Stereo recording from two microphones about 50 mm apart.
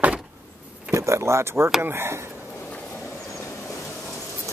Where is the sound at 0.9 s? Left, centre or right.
Right.